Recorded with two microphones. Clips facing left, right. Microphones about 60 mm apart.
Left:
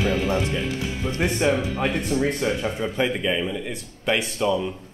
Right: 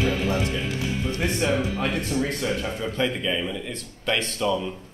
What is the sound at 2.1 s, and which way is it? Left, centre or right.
Speech, left.